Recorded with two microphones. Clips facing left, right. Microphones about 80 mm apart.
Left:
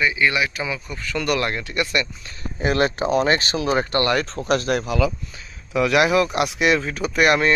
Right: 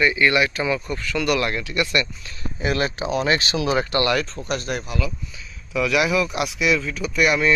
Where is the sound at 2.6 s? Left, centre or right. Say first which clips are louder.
Left 3 dB; left.